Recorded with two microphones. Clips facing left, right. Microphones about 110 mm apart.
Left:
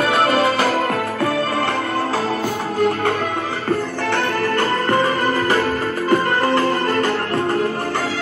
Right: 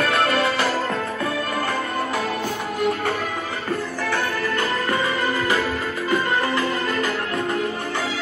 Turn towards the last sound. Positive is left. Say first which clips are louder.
# left 5 dB
turn(degrees=35)  # may be behind; listen again after turning